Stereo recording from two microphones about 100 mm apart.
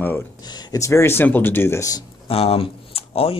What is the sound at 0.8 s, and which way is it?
Speech, 25° left (ahead or behind).